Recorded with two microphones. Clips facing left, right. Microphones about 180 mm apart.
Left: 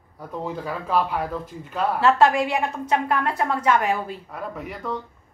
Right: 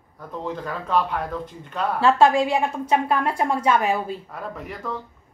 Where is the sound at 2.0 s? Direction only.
25° right (ahead or behind).